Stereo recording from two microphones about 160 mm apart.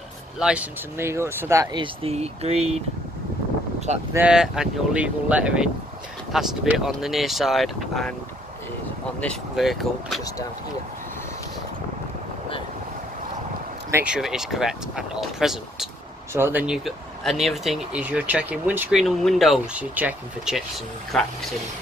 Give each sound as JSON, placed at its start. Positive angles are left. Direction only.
{"t": 0.4, "sound": "speech", "side_deg": -5}
{"t": 4.1, "sound": "speech", "side_deg": -5}
{"t": 9.2, "sound": "speech", "side_deg": 0}
{"t": 13.8, "sound": "speech", "side_deg": -15}
{"t": 14.1, "sound": "speech", "side_deg": -5}